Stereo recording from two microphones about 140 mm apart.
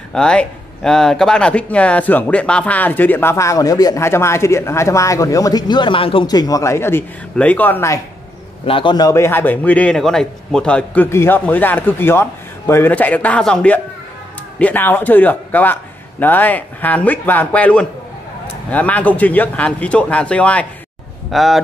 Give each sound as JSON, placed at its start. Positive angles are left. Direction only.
{"t": 0.1, "sound": "speech", "side_deg": 5}
{"t": 6.2, "sound": "speech", "side_deg": 25}
{"t": 8.6, "sound": "speech", "side_deg": 40}